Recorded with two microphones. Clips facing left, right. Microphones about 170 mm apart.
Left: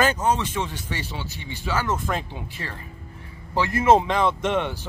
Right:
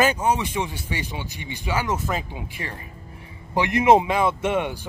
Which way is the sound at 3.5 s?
15° right (ahead or behind).